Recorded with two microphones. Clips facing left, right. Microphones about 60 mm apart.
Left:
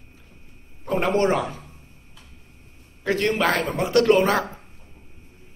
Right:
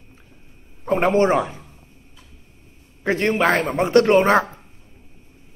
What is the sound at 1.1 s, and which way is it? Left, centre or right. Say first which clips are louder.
Speech: right 3 dB; right.